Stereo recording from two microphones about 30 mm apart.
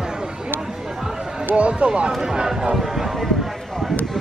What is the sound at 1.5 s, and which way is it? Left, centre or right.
Speech, right.